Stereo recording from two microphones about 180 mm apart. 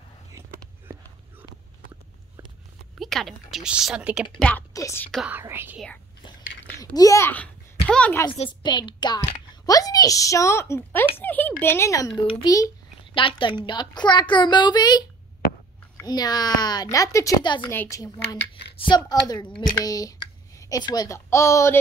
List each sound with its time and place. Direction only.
0.3 s a sound: 15° right (ahead or behind)
3.0 s speech: centre (ahead or behind)
4.7 s a child's voice: 15° left (ahead or behind)
5.1 s speech: 5° right (ahead or behind)
7.0 s a child's voice: 15° left (ahead or behind)
8.3 s a woman's voice: 25° left (ahead or behind)
12.3 s a woman's voice: 30° left (ahead or behind)
18.4 s a sound: 70° left (ahead or behind)
18.8 s a woman's voice: 25° left (ahead or behind)